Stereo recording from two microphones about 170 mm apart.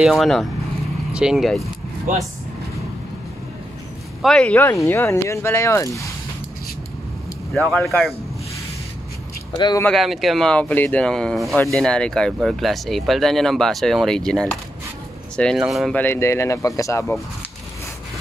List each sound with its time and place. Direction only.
0.0 s speech: centre (ahead or behind)
4.2 s speech: 5° left (ahead or behind)
7.5 s speech: centre (ahead or behind)
9.6 s speech: 25° left (ahead or behind)
9.8 s speech: centre (ahead or behind)
16.0 s speech: 15° left (ahead or behind)